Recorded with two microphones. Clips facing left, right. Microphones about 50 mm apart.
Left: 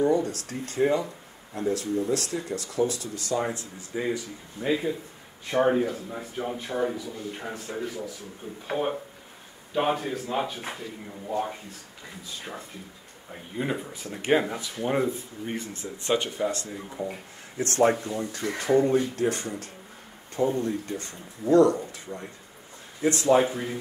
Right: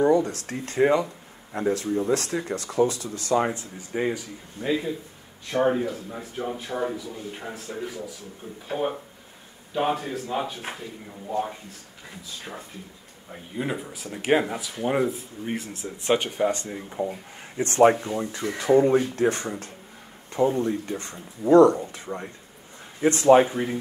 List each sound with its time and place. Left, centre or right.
0.0 s speech: right
3.4 s speech: right
4.6 s speech: centre
13.3 s speech: centre
16.1 s speech: right